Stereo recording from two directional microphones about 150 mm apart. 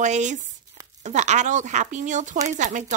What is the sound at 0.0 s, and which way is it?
Speech, 55° right (ahead or behind).